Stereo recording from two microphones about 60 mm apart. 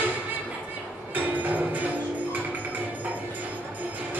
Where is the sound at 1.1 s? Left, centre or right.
Right.